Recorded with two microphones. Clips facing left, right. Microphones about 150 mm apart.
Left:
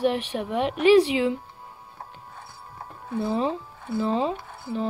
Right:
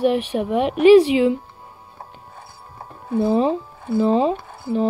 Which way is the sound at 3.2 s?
15° right (ahead or behind).